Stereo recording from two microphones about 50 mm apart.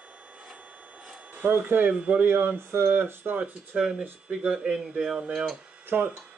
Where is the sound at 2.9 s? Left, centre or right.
Right.